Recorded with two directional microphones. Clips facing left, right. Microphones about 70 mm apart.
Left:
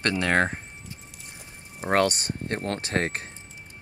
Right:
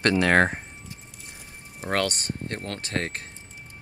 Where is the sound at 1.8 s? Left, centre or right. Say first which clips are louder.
Left 4 dB; left.